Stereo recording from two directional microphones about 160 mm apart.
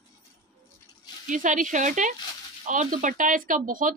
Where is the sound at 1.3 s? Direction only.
55° right (ahead or behind).